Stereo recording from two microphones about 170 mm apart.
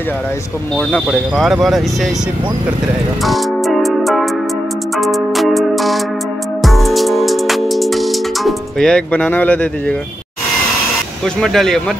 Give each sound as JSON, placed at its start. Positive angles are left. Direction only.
{"t": 0.7, "sound": "speech", "side_deg": 0}
{"t": 3.3, "sound": "music", "side_deg": 0}
{"t": 11.2, "sound": "speech", "side_deg": 5}